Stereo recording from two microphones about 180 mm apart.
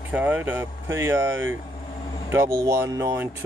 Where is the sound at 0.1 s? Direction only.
10° right (ahead or behind).